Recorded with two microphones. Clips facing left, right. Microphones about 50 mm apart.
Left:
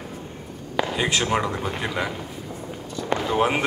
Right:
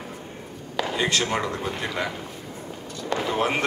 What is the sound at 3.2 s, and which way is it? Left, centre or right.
Speech, centre.